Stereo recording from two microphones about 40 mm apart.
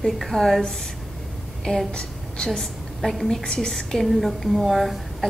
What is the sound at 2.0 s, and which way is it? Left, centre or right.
Speech, left.